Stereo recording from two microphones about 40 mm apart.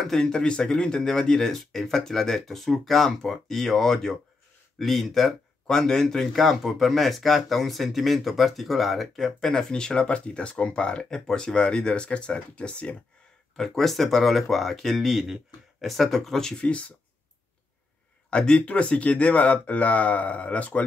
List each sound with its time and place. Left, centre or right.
0.2 s speech: centre
6.2 s speech: centre
9.5 s speech: centre
13.6 s speech: centre
16.5 s speech: left
18.3 s speech: left